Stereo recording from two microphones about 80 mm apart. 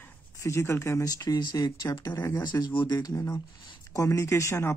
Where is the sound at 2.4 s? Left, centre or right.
Left.